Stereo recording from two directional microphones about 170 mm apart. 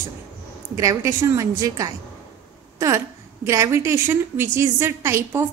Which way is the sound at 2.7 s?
15° right (ahead or behind).